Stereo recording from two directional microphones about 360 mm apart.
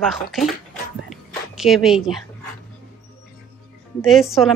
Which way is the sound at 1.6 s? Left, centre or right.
Centre.